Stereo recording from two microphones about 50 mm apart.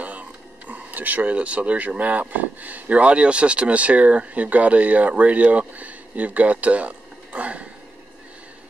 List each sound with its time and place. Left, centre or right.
0.0 s speech: right